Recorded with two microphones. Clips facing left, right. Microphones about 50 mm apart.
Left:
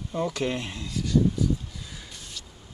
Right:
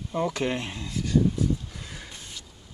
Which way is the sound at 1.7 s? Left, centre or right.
Right.